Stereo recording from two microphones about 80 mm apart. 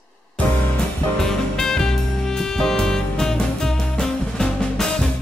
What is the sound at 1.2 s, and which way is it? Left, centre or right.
Music, centre.